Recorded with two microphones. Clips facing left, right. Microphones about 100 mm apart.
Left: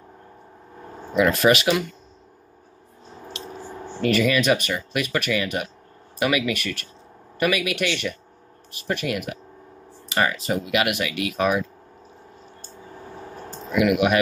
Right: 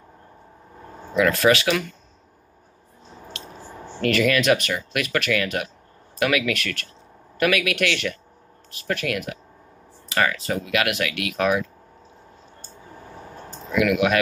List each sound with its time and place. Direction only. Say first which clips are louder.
1.2 s speech: even; 15° left (ahead or behind)
3.3 s a man's voice: left 5 dB; 5° left (ahead or behind)
13.7 s speech: left 1 dB; 10° left (ahead or behind)